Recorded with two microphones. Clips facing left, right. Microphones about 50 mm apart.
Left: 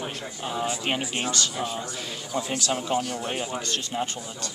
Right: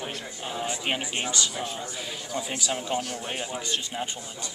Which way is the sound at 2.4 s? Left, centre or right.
Centre.